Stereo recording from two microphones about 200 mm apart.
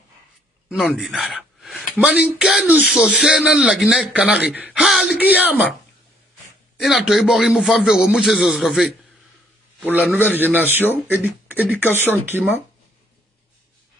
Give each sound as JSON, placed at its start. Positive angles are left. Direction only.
{"t": 0.7, "sound": "speech", "side_deg": 0}
{"t": 6.8, "sound": "speech", "side_deg": 0}
{"t": 9.9, "sound": "speech", "side_deg": -5}